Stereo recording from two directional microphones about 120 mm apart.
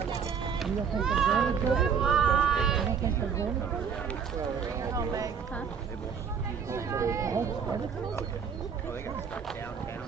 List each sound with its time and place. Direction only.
0.6 s speech: centre (ahead or behind)
4.8 s speech: 30° right (ahead or behind)
6.7 s speech: 25° right (ahead or behind)